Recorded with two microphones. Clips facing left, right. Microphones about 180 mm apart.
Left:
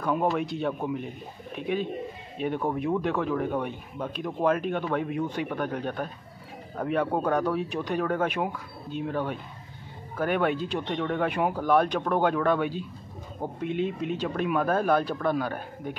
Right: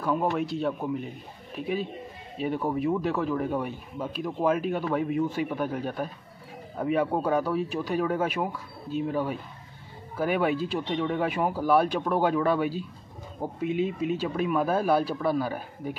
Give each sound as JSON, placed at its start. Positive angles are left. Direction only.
{"t": 0.0, "sound": "speech", "side_deg": 0}